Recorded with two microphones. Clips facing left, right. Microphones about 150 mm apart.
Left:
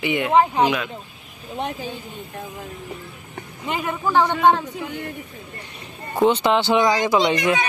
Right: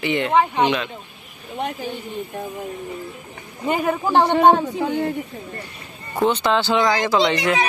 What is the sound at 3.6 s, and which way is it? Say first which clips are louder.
Speech: right 4 dB; 45° right (ahead or behind).